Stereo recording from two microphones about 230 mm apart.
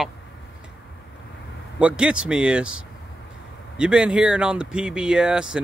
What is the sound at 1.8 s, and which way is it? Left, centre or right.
Speech, centre.